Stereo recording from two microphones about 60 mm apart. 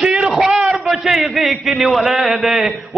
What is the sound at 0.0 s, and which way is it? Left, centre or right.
A man's voice, centre.